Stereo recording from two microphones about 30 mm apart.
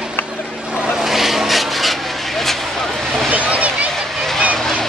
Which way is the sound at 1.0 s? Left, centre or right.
Centre.